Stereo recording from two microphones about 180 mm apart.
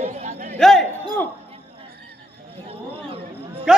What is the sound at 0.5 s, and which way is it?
Speech, centre (ahead or behind).